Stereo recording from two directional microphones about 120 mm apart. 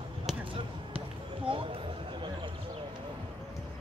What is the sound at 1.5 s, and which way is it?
Speech, 45° right (ahead or behind).